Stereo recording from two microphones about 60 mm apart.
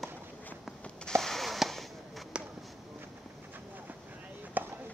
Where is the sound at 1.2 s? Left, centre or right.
Centre.